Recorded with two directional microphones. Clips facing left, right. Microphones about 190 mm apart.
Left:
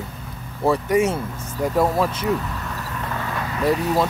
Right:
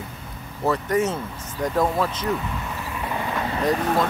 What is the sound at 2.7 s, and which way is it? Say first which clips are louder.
Vehicle: even; 10° right (ahead or behind).